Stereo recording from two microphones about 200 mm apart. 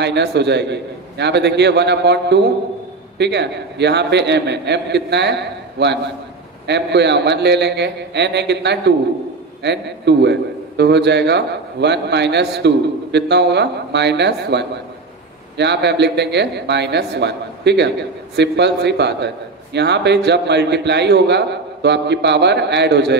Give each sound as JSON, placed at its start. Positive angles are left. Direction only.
{"t": 0.0, "sound": "a man's voice", "side_deg": -60}